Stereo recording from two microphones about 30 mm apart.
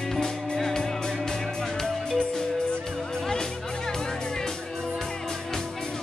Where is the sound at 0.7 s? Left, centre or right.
Left.